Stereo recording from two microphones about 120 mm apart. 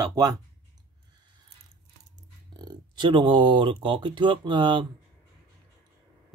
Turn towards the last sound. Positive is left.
turn(degrees=-40)  # may be behind; listen again after turning